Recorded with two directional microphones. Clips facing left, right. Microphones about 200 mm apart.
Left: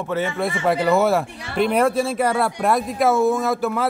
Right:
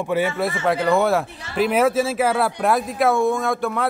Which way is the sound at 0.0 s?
10° right (ahead or behind).